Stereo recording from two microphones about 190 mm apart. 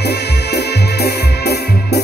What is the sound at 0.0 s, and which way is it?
Organ, 60° left (ahead or behind).